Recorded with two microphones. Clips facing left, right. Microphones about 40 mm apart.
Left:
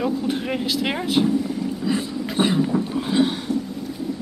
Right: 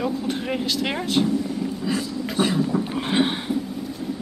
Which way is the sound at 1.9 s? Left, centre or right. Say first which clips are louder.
Left 3 dB; centre.